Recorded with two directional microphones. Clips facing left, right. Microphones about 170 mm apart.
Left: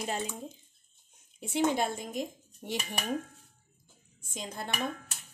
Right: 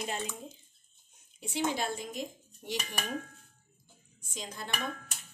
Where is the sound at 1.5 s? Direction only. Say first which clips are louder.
Left 4 dB; 50° left (ahead or behind).